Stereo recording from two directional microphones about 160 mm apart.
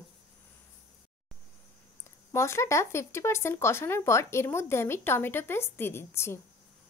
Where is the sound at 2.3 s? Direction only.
15° left (ahead or behind).